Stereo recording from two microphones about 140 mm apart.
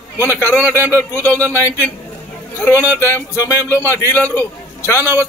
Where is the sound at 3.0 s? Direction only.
15° left (ahead or behind).